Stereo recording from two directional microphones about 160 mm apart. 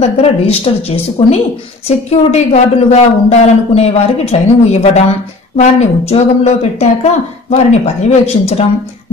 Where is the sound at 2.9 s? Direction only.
40° left (ahead or behind).